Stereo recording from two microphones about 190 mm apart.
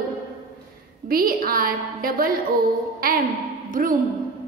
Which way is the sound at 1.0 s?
50° right (ahead or behind).